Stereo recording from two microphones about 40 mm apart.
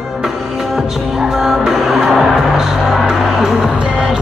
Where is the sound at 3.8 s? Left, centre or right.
Right.